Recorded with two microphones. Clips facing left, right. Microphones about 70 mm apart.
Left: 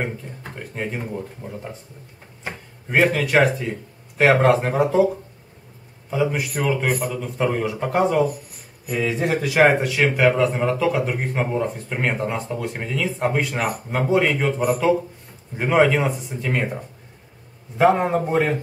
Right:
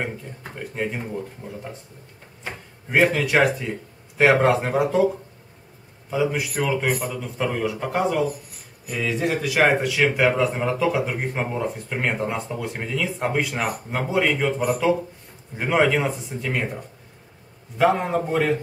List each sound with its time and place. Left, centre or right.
0.0 s a man's voice: centre
17.7 s a man's voice: centre